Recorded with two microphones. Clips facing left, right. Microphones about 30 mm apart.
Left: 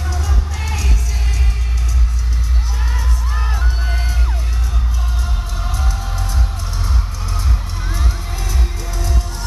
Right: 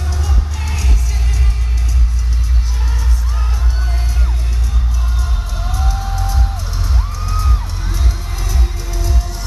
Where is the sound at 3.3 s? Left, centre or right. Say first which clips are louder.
Left 2 dB; centre.